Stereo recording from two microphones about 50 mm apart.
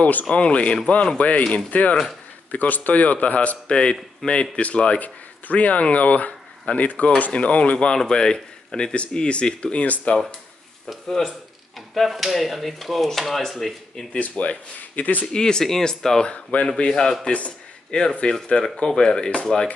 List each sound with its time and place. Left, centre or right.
0.0 s speech: left
3.6 s a man's voice: centre
11.1 s speech: centre
14.1 s speech: left
15.3 s speech: centre